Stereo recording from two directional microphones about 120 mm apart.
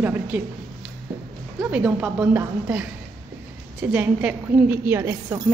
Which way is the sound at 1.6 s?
10° right (ahead or behind).